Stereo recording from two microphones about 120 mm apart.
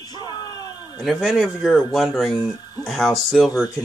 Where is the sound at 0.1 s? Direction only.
35° left (ahead or behind).